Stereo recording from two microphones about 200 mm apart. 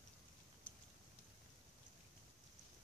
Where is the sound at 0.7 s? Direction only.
5° left (ahead or behind).